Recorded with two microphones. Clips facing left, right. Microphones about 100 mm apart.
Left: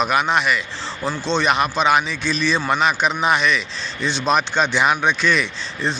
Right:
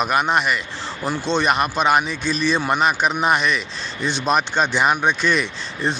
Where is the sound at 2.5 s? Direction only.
5° right (ahead or behind).